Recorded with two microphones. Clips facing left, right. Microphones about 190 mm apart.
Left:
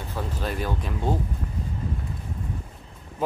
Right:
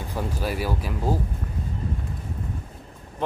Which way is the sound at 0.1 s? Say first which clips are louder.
Right 2 dB; 10° right (ahead or behind).